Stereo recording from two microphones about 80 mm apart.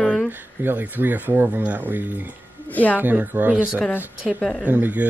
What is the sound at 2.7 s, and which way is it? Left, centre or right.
Speech, centre.